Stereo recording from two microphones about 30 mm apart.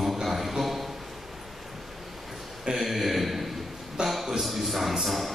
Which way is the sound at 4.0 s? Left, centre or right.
Right.